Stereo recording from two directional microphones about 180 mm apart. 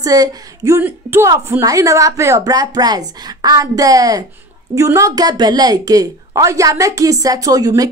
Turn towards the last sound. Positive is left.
turn(degrees=-20)  # may be behind; listen again after turning